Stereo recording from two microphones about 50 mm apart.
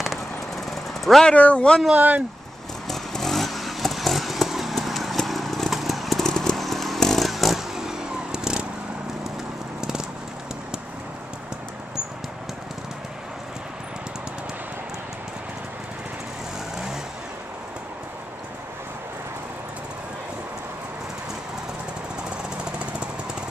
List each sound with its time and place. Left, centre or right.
0.7 s vehicle: centre
1.3 s speech: left
2.0 s speech: right
2.9 s vehicle: centre
6.2 s vehicle: centre
6.5 s motorcycle: centre
9.8 s a sound: centre